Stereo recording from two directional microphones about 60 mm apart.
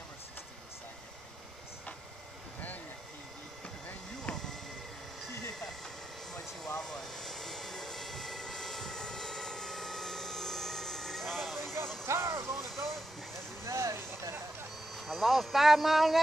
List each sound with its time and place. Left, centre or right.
4.3 s a sound: centre
6.8 s vehicle: centre
12.1 s vehicle: right
12.5 s vehicle: centre
13.7 s vehicle: right
15.0 s vehicle: centre